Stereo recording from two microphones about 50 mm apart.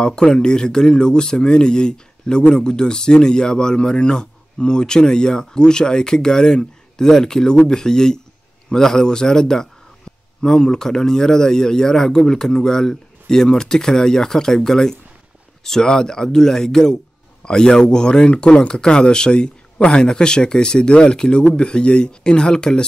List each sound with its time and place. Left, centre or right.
0.0 s speech: centre